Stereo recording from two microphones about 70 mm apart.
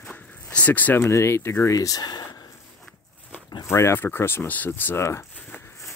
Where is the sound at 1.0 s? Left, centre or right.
Left.